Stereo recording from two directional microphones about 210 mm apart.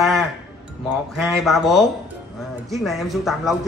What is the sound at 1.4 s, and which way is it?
Speech, centre (ahead or behind).